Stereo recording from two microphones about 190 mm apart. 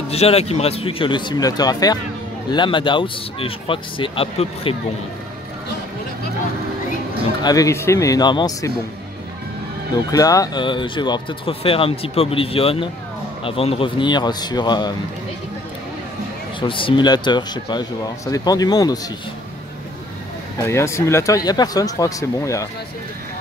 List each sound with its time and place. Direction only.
0.1 s speech: 35° left (ahead or behind)
7.4 s speech: 15° left (ahead or behind)
10.1 s speech: 20° left (ahead or behind)
16.5 s speech: 25° left (ahead or behind)
20.6 s speech: 15° left (ahead or behind)